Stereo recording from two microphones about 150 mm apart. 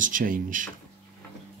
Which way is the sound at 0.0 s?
65° right (ahead or behind).